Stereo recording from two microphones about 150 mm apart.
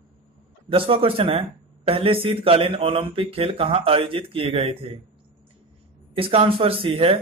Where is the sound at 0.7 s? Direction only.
35° right (ahead or behind).